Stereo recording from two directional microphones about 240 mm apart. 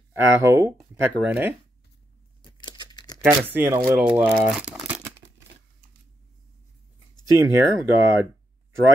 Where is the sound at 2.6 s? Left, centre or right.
Centre.